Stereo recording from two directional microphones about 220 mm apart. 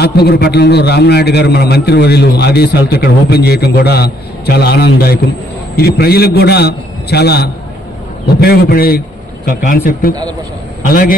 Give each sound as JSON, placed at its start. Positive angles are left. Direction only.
{"t": 0.0, "sound": "a man's voice", "side_deg": 45}